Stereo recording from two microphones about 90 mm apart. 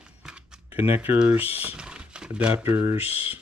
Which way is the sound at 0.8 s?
25° right (ahead or behind).